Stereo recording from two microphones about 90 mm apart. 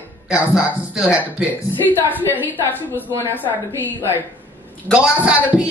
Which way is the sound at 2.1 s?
20° left (ahead or behind).